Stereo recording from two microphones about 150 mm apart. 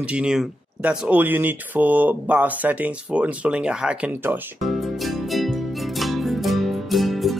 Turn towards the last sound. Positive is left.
turn(degrees=0)  # may be behind; listen again after turning